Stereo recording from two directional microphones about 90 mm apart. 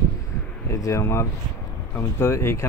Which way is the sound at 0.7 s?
35° left (ahead or behind).